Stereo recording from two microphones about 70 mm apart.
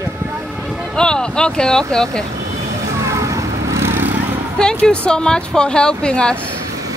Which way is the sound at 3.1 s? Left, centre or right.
Right.